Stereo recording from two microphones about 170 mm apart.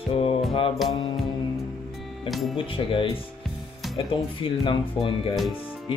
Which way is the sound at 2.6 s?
30° left (ahead or behind).